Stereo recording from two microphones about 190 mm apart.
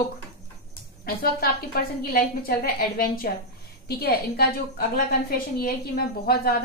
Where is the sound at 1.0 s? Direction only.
55° left (ahead or behind).